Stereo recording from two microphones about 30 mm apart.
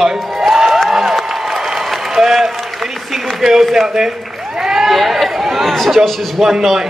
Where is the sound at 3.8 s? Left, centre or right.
Right.